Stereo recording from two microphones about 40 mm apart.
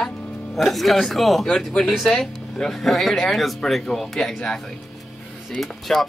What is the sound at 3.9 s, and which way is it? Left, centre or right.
Speech, centre.